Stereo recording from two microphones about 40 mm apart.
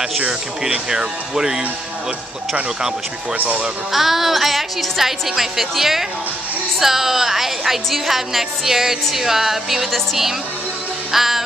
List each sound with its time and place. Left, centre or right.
0.3 s a woman's voice: centre
3.9 s a woman's voice: centre
11.1 s music: centre